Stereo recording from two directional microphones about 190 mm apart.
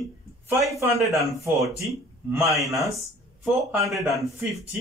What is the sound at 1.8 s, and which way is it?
Speech, 15° right (ahead or behind).